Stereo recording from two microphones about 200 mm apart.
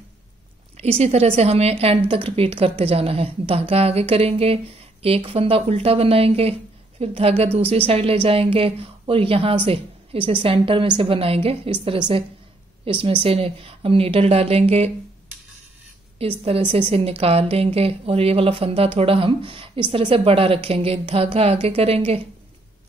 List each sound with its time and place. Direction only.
0.7 s a woman's voice: 30° right (ahead or behind)
12.8 s a woman's voice: 25° right (ahead or behind)
16.4 s a woman's voice: 30° right (ahead or behind)